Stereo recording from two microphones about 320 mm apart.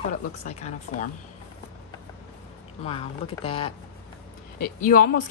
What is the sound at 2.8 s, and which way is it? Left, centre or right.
A woman's voice, centre.